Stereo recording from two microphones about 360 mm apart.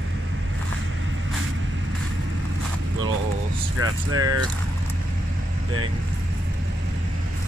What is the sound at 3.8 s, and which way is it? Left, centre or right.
Speech, right.